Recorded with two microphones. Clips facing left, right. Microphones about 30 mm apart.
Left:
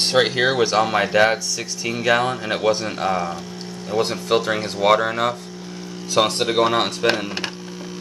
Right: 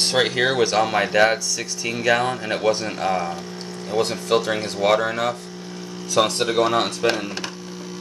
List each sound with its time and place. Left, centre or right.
0.0 s speech: centre